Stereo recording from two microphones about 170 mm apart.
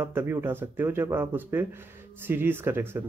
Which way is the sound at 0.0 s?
15° right (ahead or behind).